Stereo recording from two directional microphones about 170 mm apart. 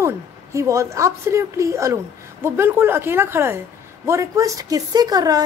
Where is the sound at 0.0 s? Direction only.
15° right (ahead or behind).